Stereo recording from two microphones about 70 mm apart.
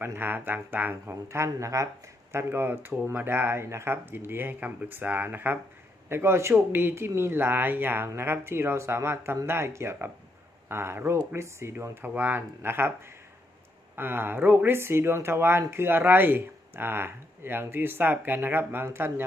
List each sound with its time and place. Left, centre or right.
0.0 s speech: right
1.3 s speech: right
2.3 s speech: right